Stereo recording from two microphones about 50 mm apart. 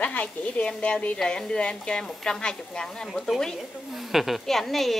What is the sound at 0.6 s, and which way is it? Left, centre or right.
Speech, left.